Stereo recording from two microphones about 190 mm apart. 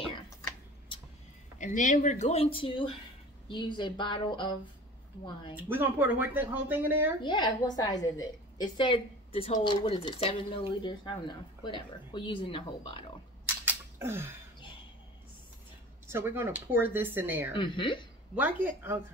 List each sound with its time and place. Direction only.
1.6 s a woman's voice: 40° left (ahead or behind); by 4.6 s 25° left (ahead or behind)
5.5 s speech: 10° right (ahead or behind)
7.2 s a woman's voice: 20° left (ahead or behind)
13.7 s a sound: 10° right (ahead or behind)
16.1 s speech: 10° right (ahead or behind)
17.6 s a woman's voice: 25° left (ahead or behind)
18.3 s speech: 10° right (ahead or behind)